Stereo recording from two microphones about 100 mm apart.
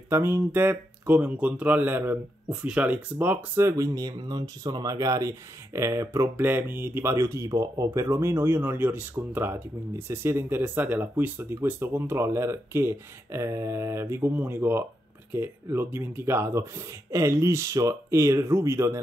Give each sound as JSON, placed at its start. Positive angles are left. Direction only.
{"t": 0.1, "sound": "speech", "side_deg": -25}
{"t": 3.6, "sound": "speech", "side_deg": -35}